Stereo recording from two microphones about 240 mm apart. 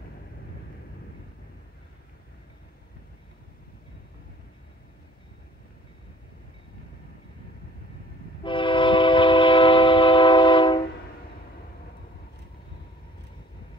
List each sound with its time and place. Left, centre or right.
8.5 s train: left